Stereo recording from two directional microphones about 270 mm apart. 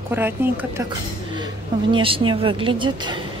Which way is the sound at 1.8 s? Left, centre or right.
Centre.